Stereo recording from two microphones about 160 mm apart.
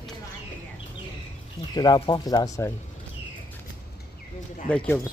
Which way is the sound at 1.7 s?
25° left (ahead or behind).